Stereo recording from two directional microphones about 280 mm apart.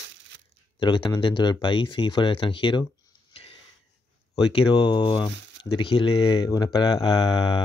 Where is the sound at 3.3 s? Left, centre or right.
Centre.